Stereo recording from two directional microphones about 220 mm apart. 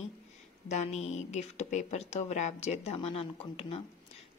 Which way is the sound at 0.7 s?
30° left (ahead or behind).